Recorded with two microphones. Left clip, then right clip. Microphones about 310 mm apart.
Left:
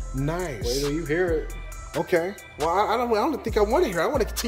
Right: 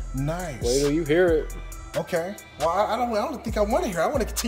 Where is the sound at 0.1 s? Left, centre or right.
Centre.